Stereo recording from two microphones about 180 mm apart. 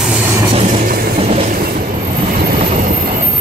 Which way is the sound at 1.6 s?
55° right (ahead or behind).